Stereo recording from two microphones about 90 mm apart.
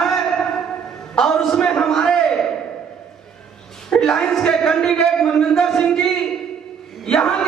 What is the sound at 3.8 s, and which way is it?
A man's voice, 5° left (ahead or behind).